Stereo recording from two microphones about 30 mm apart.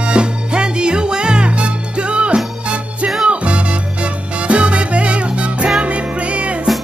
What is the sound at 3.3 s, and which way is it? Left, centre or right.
Salsa music, right.